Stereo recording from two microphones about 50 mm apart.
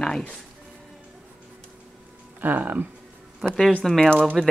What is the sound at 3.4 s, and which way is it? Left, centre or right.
Speech, centre.